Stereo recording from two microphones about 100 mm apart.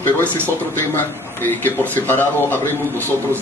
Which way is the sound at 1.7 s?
20° left (ahead or behind).